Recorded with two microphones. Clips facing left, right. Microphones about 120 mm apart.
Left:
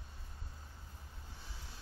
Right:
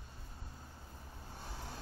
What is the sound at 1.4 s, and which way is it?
Vehicle, 50° right (ahead or behind).